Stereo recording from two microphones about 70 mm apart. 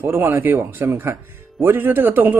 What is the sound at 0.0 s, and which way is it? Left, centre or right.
A man's voice, right.